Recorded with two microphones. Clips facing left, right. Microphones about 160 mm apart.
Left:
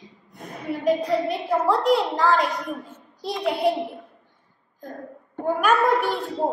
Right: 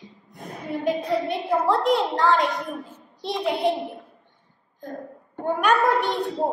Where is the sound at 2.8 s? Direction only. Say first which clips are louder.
Even; 30° right (ahead or behind).